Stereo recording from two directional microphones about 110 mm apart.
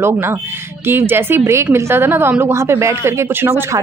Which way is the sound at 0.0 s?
20° right (ahead or behind).